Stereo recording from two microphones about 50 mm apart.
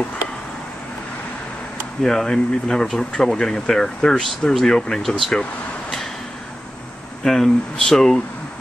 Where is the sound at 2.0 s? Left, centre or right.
Centre.